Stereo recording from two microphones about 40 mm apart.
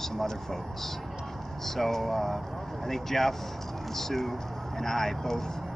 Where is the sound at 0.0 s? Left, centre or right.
Centre.